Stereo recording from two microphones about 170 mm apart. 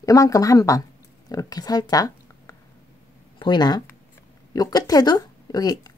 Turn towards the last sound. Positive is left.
turn(degrees=25)  # may be behind; listen again after turning